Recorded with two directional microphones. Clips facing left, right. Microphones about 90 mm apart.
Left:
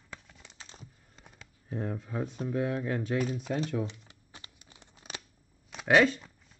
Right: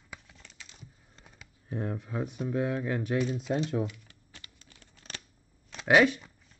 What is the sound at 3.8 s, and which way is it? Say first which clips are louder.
Crumpling: right 2 dB; 25° left (ahead or behind).